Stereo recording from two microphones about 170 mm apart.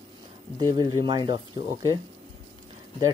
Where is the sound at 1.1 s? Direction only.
25° right (ahead or behind).